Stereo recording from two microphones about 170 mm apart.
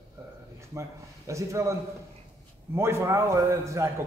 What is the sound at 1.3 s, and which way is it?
Speech, 15° right (ahead or behind).